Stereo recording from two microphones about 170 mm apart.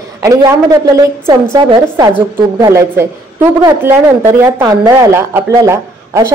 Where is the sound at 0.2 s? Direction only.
20° right (ahead or behind).